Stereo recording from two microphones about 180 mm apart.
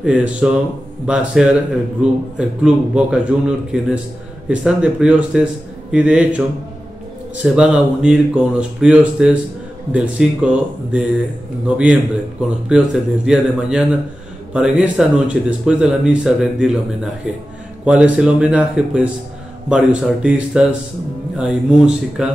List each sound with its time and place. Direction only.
0.0 s a man's voice: 5° right (ahead or behind)
7.4 s a man's voice: 5° right (ahead or behind)